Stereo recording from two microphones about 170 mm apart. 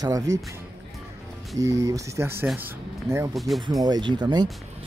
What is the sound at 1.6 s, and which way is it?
Speech, 20° right (ahead or behind).